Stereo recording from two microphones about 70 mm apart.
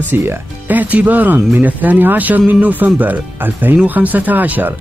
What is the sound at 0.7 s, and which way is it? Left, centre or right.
Speech, right.